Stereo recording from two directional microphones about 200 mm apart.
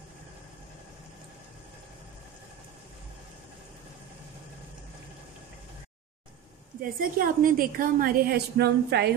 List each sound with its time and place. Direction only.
7.0 s a woman's voice: 45° right (ahead or behind)